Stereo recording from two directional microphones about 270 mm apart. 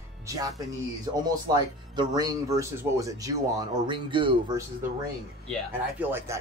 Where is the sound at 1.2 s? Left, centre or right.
Centre.